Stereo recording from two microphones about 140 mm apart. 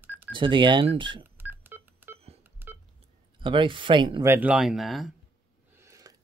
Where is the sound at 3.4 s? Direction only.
35° right (ahead or behind).